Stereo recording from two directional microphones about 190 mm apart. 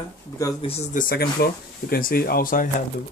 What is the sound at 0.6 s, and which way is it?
Speech, 30° left (ahead or behind).